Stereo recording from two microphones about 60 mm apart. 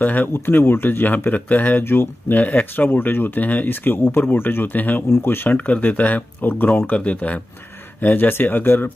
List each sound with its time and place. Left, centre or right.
0.0 s speech: left